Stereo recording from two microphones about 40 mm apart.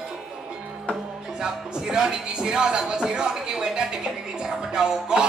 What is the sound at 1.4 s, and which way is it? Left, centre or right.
Speech, centre.